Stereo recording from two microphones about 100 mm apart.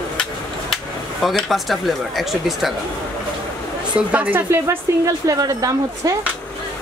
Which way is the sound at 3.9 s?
15° right (ahead or behind).